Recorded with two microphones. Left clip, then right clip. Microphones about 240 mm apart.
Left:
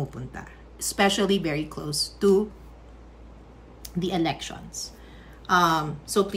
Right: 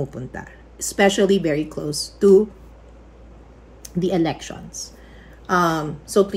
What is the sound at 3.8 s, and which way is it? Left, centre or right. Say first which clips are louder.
Speech: right 6 dB; centre.